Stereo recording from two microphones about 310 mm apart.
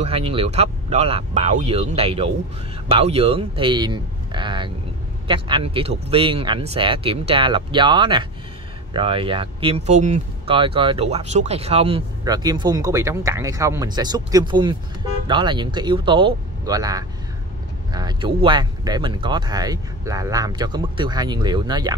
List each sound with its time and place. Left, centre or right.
0.0 s speech: centre